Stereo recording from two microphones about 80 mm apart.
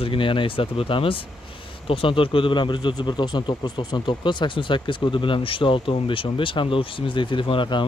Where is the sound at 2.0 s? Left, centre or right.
Left.